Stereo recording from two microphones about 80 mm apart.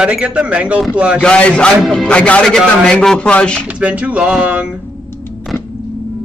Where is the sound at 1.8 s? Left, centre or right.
Centre.